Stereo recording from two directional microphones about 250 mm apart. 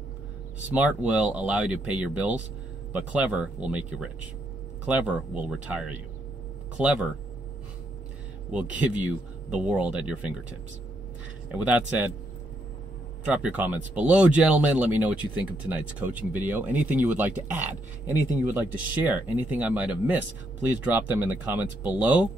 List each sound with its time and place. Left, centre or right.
0.7 s speech: centre
8.5 s speech: centre
11.5 s speech: centre
13.3 s speech: centre